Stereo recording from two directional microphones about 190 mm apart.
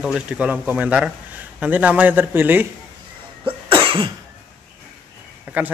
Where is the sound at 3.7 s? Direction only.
25° right (ahead or behind).